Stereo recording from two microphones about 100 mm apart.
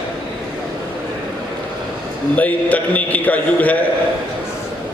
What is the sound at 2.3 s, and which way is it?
A man's voice, 15° left (ahead or behind).